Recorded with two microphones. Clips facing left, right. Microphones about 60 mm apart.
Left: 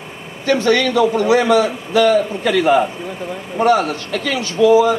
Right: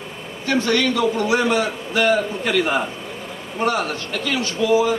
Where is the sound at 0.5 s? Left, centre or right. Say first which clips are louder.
Left 4 dB; left.